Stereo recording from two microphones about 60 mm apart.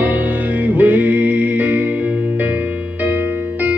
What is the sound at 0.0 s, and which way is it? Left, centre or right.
Music, right.